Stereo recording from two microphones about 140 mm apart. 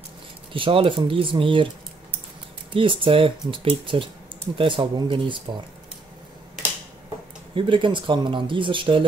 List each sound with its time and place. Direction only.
0.5 s speech: 40° right (ahead or behind)
2.7 s speech: 40° right (ahead or behind)
7.5 s speech: 35° right (ahead or behind)